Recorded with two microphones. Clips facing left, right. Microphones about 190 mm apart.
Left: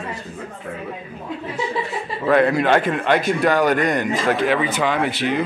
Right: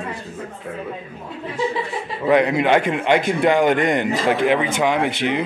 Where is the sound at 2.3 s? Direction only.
15° right (ahead or behind).